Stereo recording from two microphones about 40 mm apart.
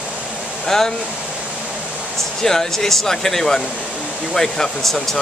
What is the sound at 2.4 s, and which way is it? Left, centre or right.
Speech, centre.